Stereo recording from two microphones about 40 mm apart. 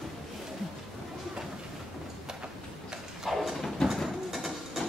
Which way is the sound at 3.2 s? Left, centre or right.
Centre.